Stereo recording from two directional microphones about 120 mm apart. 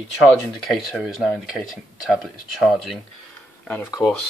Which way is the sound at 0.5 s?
Centre (ahead or behind).